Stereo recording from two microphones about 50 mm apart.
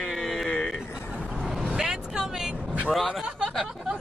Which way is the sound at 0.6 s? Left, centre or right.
Left.